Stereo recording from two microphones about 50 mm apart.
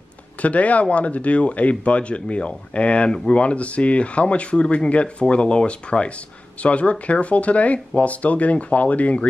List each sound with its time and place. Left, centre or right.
0.4 s speech: left